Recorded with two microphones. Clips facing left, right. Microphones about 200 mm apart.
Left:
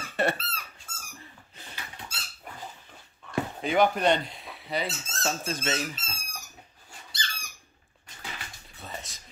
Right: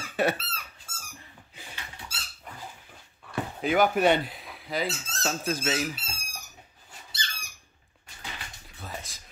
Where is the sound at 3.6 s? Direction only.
5° right (ahead or behind).